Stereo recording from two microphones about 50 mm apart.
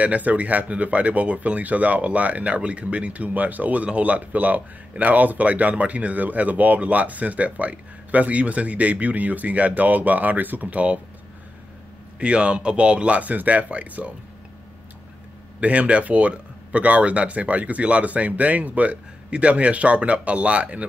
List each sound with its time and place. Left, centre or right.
0.0 s speech: right
12.2 s speech: right
15.6 s speech: right